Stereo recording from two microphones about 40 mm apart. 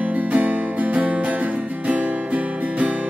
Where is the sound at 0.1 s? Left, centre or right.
Right.